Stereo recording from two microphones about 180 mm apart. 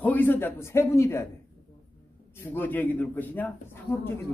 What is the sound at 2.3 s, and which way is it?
A man's voice, 10° left (ahead or behind).